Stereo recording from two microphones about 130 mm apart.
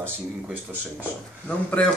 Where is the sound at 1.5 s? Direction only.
10° left (ahead or behind).